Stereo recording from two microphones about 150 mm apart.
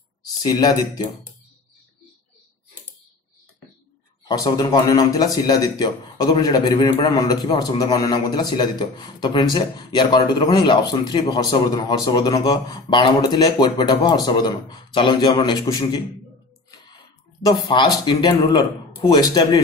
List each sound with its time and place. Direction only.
0.4 s speech: 25° left (ahead or behind)
4.3 s speech: 25° left (ahead or behind)
17.5 s speech: 30° left (ahead or behind)